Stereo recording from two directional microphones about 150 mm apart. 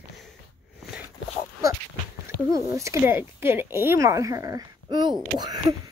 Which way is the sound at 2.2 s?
20° right (ahead or behind).